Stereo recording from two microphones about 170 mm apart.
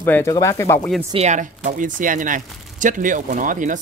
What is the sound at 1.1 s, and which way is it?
Speech, 45° right (ahead or behind).